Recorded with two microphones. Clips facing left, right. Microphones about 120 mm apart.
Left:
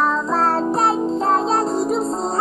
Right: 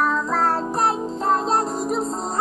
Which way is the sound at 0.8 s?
30° left (ahead or behind).